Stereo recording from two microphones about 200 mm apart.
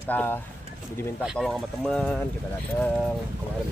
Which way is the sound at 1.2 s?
Centre (ahead or behind).